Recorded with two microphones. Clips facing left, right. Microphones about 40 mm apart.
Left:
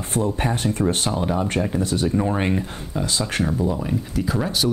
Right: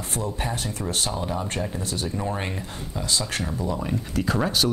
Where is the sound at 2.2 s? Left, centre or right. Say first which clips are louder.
Left 7 dB; centre.